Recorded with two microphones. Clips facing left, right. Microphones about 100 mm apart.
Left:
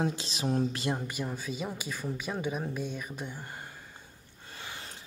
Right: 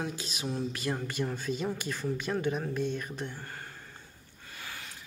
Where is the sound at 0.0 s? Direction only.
30° left (ahead or behind).